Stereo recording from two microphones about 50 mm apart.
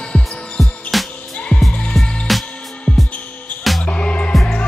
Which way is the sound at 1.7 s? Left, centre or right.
Left.